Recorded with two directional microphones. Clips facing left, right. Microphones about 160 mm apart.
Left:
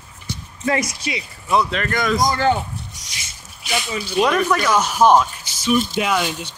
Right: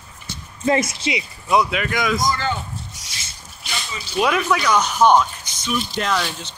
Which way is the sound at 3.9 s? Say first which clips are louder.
Left 8 dB; 55° left (ahead or behind).